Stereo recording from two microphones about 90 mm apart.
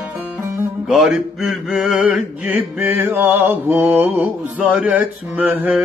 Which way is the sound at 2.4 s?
20° right (ahead or behind).